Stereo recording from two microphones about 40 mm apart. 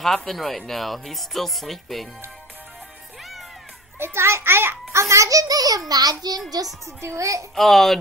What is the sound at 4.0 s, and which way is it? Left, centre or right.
Speech, right.